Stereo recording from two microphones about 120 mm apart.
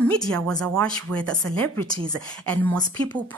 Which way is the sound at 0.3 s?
10° left (ahead or behind).